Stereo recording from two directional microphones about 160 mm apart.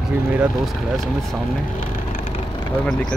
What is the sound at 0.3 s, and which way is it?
Speech, 5° right (ahead or behind).